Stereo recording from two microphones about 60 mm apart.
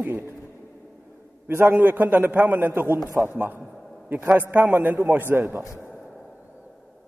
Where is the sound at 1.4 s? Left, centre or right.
Right.